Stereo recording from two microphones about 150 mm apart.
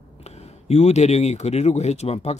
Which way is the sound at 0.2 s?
45° left (ahead or behind).